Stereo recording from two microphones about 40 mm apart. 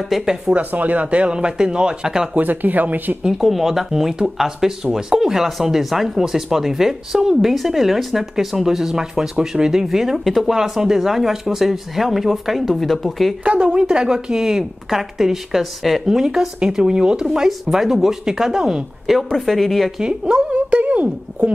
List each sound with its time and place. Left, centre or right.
0.1 s speech: centre
0.6 s speech: right; by 2.2 s centre
2.3 s speech: right
3.3 s speech: centre
13.7 s speech: right
16.7 s speech: centre
19.0 s speech: centre
20.0 s speech: right
20.5 s speech: right